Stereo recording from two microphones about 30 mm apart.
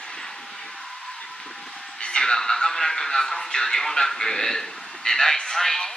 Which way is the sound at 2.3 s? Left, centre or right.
Centre.